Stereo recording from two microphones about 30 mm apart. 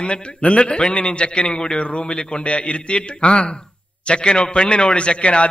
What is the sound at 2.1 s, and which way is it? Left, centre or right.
A man's voice, left.